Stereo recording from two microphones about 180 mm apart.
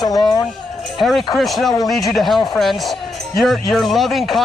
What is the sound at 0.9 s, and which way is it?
Speech, centre (ahead or behind).